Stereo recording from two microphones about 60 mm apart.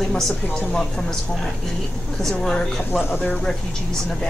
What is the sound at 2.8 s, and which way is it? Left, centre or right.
Speech, left.